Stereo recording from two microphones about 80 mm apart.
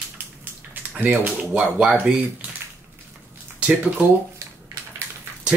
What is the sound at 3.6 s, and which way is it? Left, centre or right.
Speech, centre.